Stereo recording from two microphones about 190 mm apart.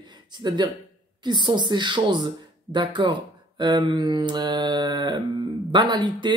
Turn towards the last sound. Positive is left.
turn(degrees=-25)  # may be behind; listen again after turning